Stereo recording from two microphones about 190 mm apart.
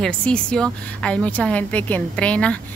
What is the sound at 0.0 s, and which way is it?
A woman's voice, 5° left (ahead or behind).